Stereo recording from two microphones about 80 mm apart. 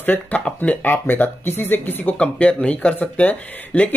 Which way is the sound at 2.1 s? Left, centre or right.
Centre.